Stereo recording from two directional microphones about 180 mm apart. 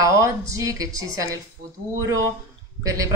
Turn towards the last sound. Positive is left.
turn(degrees=-20)  # may be behind; listen again after turning